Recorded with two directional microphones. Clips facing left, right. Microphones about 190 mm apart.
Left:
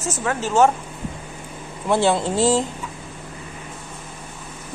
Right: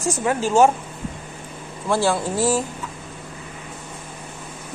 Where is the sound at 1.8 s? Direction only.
20° left (ahead or behind).